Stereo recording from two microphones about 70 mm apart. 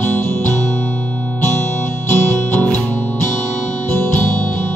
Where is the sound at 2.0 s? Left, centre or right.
Left.